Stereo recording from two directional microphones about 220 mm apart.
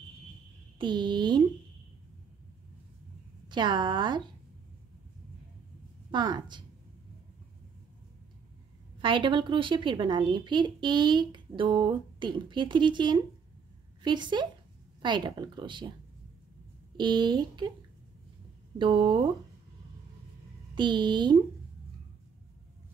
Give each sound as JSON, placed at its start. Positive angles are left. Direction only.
{"t": 0.7, "sound": "speech", "side_deg": -20}
{"t": 3.4, "sound": "speech", "side_deg": -20}
{"t": 6.1, "sound": "speech", "side_deg": -20}
{"t": 9.0, "sound": "speech", "side_deg": -20}
{"t": 16.9, "sound": "speech", "side_deg": -20}
{"t": 18.8, "sound": "speech", "side_deg": -25}
{"t": 20.7, "sound": "speech", "side_deg": -20}